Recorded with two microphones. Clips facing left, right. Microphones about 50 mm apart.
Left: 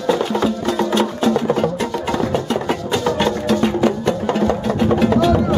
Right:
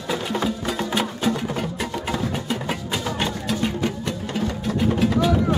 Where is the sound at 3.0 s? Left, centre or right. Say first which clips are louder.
Left 9 dB; centre.